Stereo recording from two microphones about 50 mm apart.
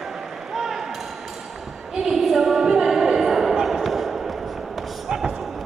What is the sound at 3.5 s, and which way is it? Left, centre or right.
Basketball bounce, centre.